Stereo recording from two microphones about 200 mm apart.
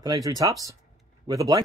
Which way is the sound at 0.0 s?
15° right (ahead or behind).